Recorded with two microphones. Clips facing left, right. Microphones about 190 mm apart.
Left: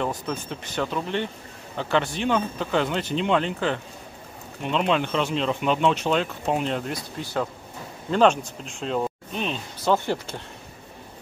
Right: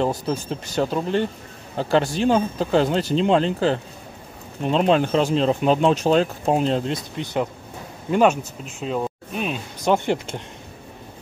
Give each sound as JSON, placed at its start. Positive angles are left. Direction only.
{"t": 0.0, "sound": "speech", "side_deg": -35}
{"t": 8.1, "sound": "speech", "side_deg": -10}